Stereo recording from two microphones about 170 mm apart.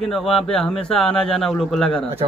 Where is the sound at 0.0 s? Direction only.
Centre (ahead or behind).